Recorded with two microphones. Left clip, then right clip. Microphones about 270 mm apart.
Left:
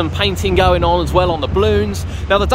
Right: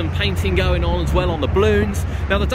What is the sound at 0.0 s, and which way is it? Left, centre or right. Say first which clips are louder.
Speech: left 5 dB; centre.